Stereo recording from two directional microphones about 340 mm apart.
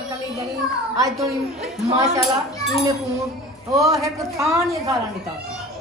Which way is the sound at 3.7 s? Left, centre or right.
Centre.